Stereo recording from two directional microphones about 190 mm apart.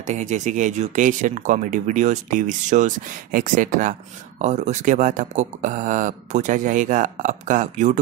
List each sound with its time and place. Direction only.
0.0 s speech: 40° right (ahead or behind)